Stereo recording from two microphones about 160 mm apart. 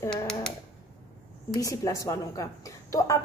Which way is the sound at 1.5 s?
20° left (ahead or behind).